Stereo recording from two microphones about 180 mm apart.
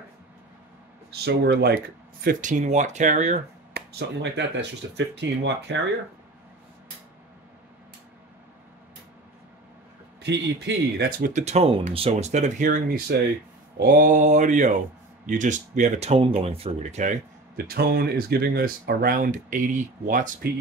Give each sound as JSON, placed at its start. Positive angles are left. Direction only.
{"t": 1.2, "sound": "speech", "side_deg": -65}
{"t": 2.2, "sound": "speech", "side_deg": -45}
{"t": 3.7, "sound": "speech", "side_deg": -75}
{"t": 10.2, "sound": "speech", "side_deg": -65}
{"t": 11.4, "sound": "speech", "side_deg": -35}